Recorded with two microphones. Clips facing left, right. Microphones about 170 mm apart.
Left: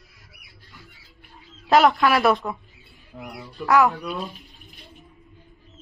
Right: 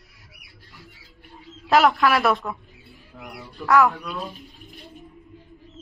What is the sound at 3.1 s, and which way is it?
Speech, 20° left (ahead or behind).